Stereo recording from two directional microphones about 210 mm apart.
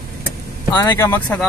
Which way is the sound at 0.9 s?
10° left (ahead or behind).